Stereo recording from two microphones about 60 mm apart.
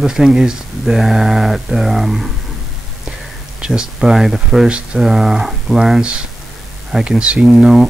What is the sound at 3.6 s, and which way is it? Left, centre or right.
Speech, centre.